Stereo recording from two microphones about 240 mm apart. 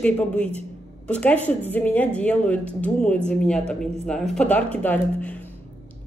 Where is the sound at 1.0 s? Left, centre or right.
Centre.